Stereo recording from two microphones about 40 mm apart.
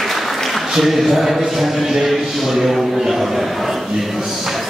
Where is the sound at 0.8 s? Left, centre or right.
Centre.